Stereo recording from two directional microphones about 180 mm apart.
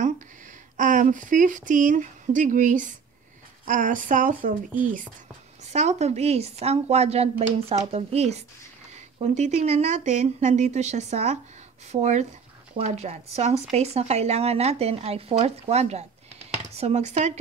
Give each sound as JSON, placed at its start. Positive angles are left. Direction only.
{"t": 0.7, "sound": "speech", "side_deg": -45}